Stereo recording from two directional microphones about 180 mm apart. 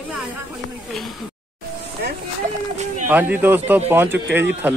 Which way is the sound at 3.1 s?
10° right (ahead or behind).